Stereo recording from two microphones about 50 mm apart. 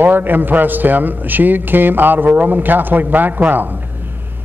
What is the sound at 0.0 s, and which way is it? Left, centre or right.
A man's voice, right.